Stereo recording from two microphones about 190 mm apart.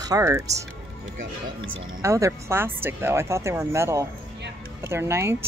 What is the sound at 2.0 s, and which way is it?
A woman's voice, 15° right (ahead or behind).